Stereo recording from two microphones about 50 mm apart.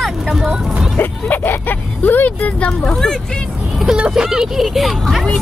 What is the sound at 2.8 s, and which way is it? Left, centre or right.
Speech, centre.